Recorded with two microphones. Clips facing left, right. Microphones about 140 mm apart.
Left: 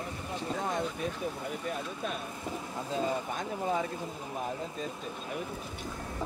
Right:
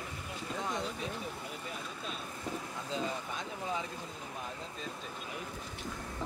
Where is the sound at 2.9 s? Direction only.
50° left (ahead or behind).